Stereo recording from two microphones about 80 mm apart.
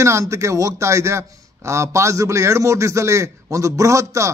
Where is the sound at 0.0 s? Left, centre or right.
Right.